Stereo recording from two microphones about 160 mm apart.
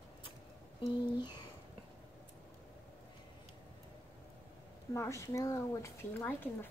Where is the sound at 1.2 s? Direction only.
30° left (ahead or behind).